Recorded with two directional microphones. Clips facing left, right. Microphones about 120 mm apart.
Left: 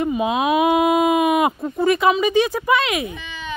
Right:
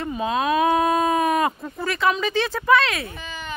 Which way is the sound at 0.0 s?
15° left (ahead or behind).